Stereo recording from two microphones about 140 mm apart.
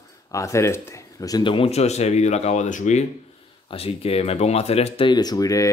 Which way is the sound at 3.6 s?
45° left (ahead or behind).